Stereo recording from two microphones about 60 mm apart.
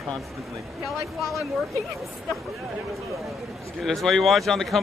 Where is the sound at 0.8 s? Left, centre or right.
Centre.